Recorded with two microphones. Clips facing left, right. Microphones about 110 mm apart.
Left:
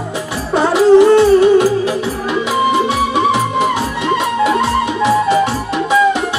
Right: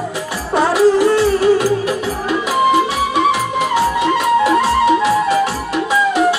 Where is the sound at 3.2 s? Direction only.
25° left (ahead or behind).